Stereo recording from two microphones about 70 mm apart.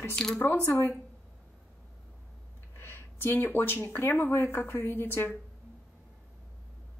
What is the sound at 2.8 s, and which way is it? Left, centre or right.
Speech, left.